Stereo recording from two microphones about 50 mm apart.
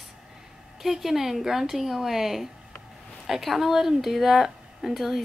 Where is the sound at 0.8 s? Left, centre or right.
Centre.